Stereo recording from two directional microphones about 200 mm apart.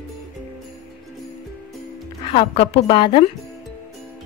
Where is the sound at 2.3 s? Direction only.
30° left (ahead or behind).